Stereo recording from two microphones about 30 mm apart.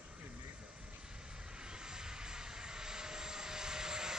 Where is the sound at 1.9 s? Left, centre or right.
Right.